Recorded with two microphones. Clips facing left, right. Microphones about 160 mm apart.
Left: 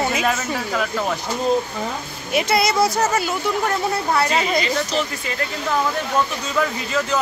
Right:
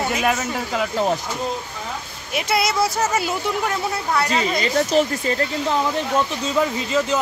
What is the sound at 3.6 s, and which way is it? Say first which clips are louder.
Speech: left 2 dB; 5° left (ahead or behind).